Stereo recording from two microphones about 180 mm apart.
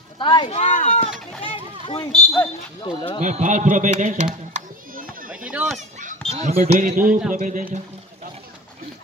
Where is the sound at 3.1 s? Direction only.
40° right (ahead or behind).